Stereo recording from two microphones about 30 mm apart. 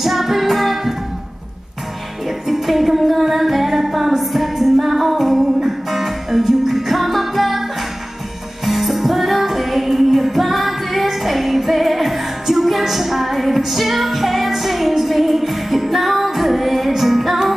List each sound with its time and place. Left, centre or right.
0.0 s child singing: centre
2.2 s music: centre
8.6 s music: centre